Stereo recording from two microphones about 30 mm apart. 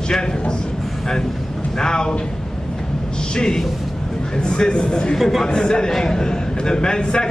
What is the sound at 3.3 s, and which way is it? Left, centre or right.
A man's voice, left.